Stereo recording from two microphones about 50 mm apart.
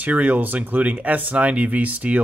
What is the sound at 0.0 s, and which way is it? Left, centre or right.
Speech, right.